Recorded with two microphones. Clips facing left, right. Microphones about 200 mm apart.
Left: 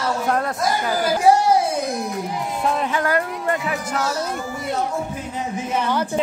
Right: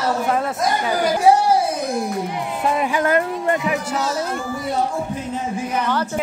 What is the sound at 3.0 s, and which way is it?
Speech, 20° right (ahead or behind).